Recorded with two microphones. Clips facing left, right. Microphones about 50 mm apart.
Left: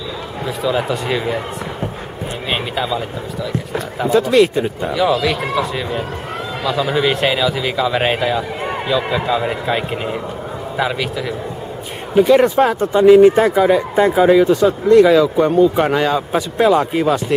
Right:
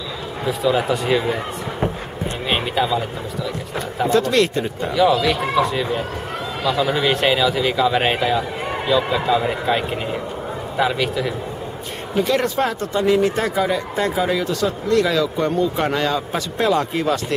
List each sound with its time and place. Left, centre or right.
0.5 s speech: centre
2.5 s speech: centre
4.0 s speech: centre
12.2 s speech: centre